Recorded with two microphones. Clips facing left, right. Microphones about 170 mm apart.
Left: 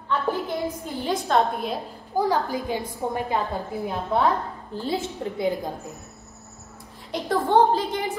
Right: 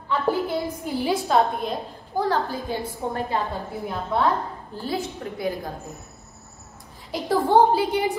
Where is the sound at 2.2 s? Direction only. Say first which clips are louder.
Even; 15° left (ahead or behind).